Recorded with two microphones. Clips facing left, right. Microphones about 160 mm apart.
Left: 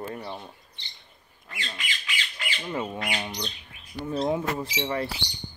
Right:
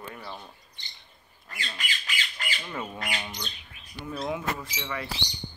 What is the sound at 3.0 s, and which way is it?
Speech, 35° left (ahead or behind).